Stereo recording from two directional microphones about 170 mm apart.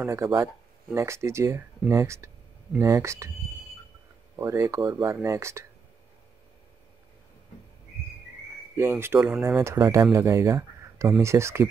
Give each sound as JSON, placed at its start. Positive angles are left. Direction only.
{"t": 0.0, "sound": "speech", "side_deg": -15}
{"t": 4.4, "sound": "speech", "side_deg": -15}
{"t": 8.7, "sound": "speech", "side_deg": -15}